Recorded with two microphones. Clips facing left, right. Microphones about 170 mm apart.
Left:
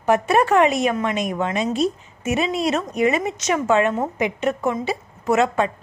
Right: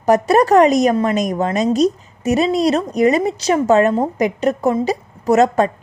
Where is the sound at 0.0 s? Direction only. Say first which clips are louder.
Right 5 dB; 40° right (ahead or behind).